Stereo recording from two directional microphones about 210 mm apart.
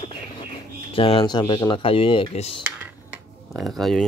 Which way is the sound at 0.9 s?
25° left (ahead or behind).